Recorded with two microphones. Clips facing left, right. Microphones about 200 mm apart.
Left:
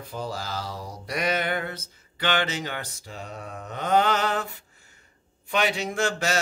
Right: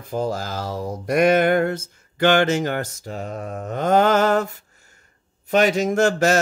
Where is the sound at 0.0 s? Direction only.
45° right (ahead or behind).